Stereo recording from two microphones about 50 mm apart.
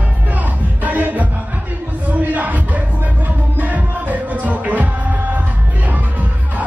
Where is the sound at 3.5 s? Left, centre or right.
Right.